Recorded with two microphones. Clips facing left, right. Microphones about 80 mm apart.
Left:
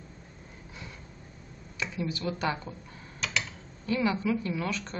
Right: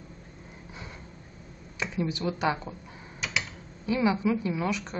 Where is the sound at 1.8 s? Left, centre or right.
Right.